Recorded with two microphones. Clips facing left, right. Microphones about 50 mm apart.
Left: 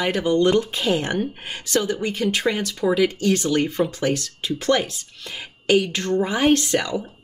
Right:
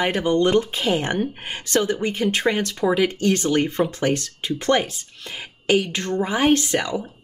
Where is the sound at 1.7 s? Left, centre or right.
Right.